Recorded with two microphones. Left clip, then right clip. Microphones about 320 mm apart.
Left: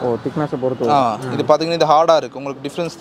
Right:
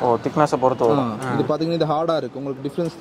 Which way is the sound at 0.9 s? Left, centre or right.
Left.